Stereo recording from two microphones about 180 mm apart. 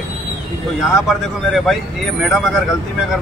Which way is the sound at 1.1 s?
Centre (ahead or behind).